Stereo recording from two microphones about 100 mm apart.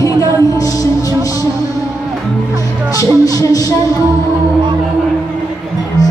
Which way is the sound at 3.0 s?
40° left (ahead or behind).